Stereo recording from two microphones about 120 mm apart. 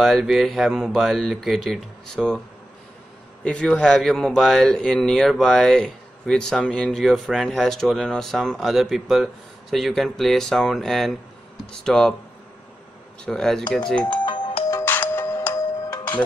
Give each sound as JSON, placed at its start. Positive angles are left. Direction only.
{"t": 0.0, "sound": "a man's voice", "side_deg": 0}
{"t": 3.4, "sound": "a man's voice", "side_deg": 5}
{"t": 13.2, "sound": "a man's voice", "side_deg": 5}
{"t": 14.2, "sound": "music", "side_deg": 40}
{"t": 14.7, "sound": "music", "side_deg": 20}
{"t": 15.9, "sound": "music", "side_deg": 35}